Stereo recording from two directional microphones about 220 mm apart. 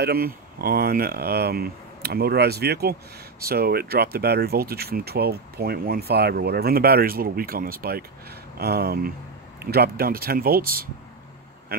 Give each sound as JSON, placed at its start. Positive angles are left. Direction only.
{"t": 0.0, "sound": "speech", "side_deg": -45}